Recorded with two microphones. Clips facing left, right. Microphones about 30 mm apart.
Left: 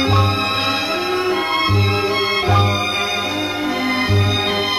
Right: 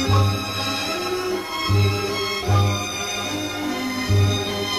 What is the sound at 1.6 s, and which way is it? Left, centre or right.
Music, left.